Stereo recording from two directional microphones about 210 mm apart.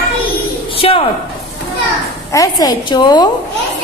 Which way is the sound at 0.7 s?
25° left (ahead or behind).